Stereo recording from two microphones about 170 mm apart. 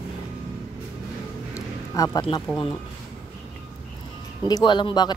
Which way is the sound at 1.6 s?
20° left (ahead or behind).